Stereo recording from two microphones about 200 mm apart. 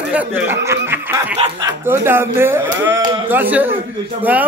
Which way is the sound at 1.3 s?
25° right (ahead or behind).